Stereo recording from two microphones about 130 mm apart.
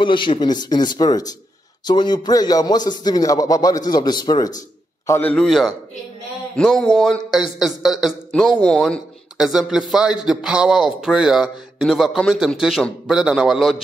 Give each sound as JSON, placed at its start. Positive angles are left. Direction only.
{"t": 0.0, "sound": "speech", "side_deg": 40}
{"t": 4.6, "sound": "a sound", "side_deg": 25}
{"t": 5.2, "sound": "a man's voice", "side_deg": 5}